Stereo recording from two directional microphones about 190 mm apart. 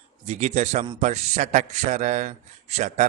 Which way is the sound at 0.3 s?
40° right (ahead or behind).